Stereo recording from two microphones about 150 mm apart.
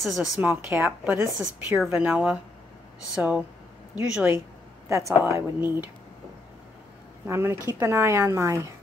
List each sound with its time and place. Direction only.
0.0 s speech: centre (ahead or behind)
0.5 s speech: 15° right (ahead or behind)
1.4 s speech: 5° right (ahead or behind)
7.2 s speech: 15° right (ahead or behind)